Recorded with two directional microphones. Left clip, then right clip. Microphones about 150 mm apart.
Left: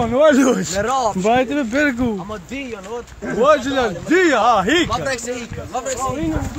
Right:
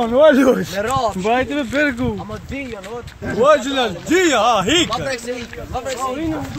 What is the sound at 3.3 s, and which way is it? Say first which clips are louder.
Speech: right 1 dB; 20° right (ahead or behind).